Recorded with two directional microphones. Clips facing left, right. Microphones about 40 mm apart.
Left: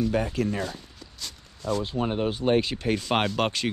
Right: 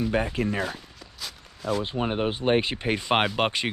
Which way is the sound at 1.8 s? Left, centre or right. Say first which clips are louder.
Even; right.